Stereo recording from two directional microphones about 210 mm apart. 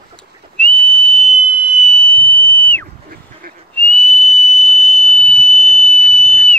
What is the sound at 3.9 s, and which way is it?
Whistle, centre (ahead or behind).